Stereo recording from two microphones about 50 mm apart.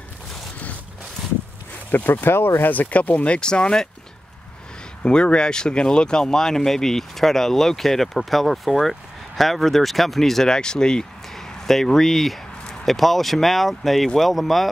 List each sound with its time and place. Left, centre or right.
1.9 s speech: left
2.7 s speech: left
3.3 s speech: centre
5.0 s speech: centre